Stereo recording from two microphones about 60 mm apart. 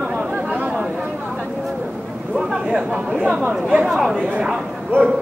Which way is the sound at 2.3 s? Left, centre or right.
Centre.